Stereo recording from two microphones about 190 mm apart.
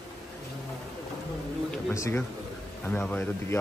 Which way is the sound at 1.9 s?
15° left (ahead or behind).